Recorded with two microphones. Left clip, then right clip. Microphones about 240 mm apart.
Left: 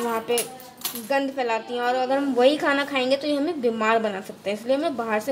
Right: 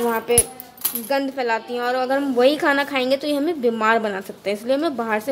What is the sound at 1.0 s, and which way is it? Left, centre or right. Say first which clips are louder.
A woman's voice: right 2 dB; centre.